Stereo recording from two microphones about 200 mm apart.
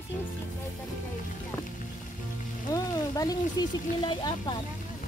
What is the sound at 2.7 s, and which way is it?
Speech, 20° left (ahead or behind).